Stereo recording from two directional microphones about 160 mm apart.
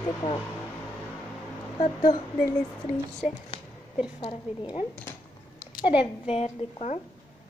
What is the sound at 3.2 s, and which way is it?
Speech, 5° right (ahead or behind).